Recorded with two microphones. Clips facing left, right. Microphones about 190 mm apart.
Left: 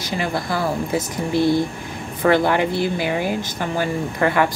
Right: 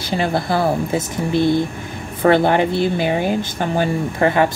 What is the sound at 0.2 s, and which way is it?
Speech, 30° right (ahead or behind).